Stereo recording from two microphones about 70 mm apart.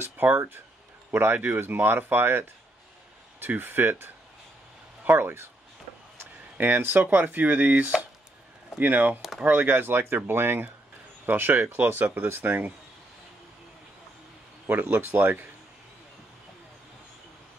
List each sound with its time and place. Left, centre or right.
0.0 s speech: right
14.7 s speech: right